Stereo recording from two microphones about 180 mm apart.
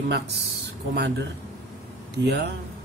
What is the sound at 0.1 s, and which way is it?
Speech, 70° right (ahead or behind).